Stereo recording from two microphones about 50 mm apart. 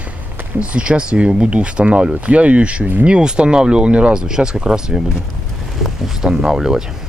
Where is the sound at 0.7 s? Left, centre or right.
Right.